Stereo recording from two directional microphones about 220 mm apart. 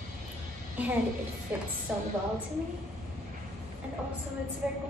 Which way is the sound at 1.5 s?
10° right (ahead or behind).